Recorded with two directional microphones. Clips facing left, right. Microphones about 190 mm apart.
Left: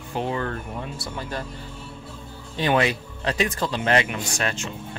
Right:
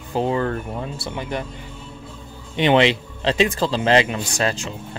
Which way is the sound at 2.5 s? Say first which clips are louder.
Right 5 dB; 20° right (ahead or behind).